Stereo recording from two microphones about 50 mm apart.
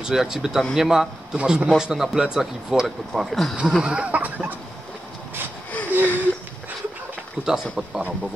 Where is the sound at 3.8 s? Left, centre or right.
Right.